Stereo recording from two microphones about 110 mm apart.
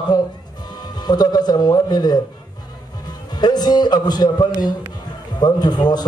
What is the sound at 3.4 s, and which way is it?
A man's voice, 40° left (ahead or behind).